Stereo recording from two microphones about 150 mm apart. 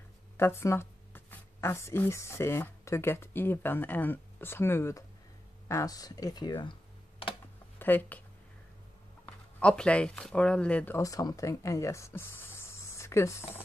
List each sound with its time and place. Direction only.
0.4 s speech: 15° left (ahead or behind)
7.8 s speech: 10° left (ahead or behind)
9.6 s speech: 5° left (ahead or behind)
11.0 s speech: 25° left (ahead or behind)